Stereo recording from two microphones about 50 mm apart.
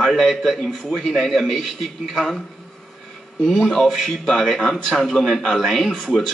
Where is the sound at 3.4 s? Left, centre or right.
Centre.